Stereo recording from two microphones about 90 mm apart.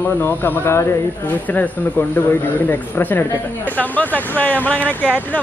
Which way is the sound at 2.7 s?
20° left (ahead or behind).